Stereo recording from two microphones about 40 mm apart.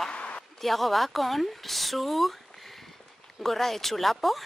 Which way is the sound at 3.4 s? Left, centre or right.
Centre.